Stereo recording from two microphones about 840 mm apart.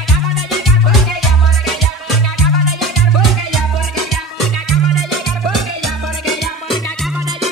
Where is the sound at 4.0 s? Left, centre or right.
Left.